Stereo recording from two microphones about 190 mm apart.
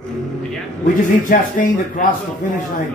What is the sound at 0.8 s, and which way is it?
A man's voice, 45° left (ahead or behind).